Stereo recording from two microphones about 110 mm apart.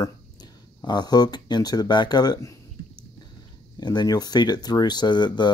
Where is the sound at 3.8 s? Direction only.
40° left (ahead or behind).